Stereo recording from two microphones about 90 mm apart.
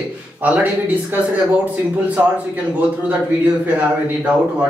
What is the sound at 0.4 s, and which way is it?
Speech, 20° right (ahead or behind).